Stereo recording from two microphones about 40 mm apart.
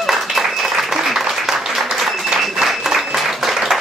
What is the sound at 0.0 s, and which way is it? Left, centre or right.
Applause, centre.